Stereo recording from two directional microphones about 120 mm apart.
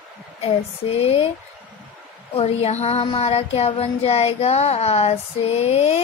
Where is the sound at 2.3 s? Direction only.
60° left (ahead or behind).